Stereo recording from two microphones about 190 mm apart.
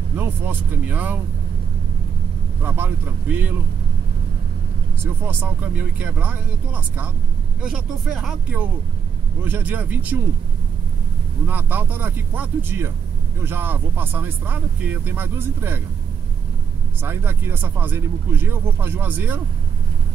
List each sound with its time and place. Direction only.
0.2 s speech: 10° right (ahead or behind)
2.6 s speech: 10° right (ahead or behind)
5.0 s speech: 10° right (ahead or behind)
11.4 s speech: 10° right (ahead or behind)
17.0 s speech: 10° right (ahead or behind)